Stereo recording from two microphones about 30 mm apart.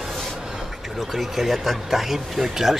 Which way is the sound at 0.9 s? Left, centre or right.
Centre.